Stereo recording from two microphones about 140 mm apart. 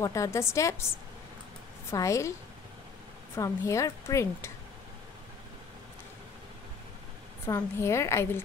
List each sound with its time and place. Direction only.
0.0 s a woman's voice: 20° left (ahead or behind)
1.9 s a woman's voice: 20° left (ahead or behind)
3.3 s a woman's voice: 20° left (ahead or behind)
7.4 s a woman's voice: 20° left (ahead or behind)